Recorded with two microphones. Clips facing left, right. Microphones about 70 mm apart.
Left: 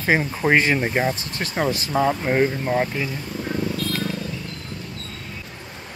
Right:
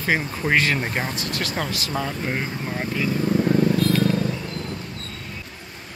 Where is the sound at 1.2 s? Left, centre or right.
Left.